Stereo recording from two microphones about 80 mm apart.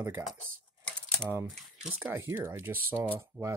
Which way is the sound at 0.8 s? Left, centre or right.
Centre.